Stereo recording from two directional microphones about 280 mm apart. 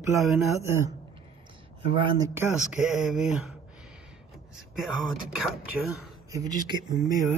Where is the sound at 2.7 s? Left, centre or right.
Centre.